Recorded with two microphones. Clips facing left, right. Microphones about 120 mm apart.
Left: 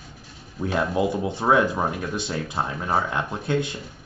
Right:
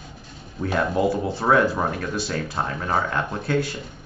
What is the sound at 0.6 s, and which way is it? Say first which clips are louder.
Speech: right 1 dB; 10° left (ahead or behind).